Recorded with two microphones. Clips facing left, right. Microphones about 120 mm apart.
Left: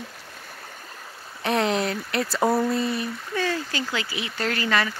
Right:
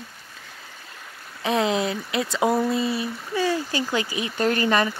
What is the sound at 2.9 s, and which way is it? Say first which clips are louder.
Speech: right 1 dB; 15° right (ahead or behind).